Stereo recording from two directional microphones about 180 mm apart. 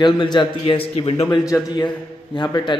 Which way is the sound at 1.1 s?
15° left (ahead or behind).